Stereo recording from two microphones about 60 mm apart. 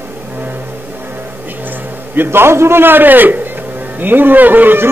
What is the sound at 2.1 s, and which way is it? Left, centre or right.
Music, right.